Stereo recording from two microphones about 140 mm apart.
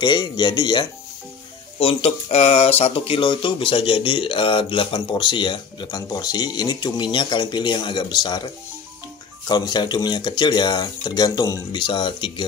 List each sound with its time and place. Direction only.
0.0 s speech: 30° left (ahead or behind)
9.5 s speech: 30° left (ahead or behind)